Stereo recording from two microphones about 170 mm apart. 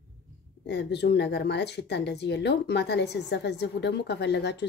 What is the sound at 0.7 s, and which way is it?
Speech, 85° left.